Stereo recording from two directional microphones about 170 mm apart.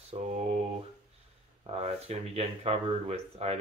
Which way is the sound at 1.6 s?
35° right (ahead or behind).